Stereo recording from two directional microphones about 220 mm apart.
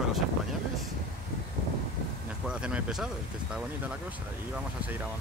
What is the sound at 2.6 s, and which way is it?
Speech, 5° right (ahead or behind).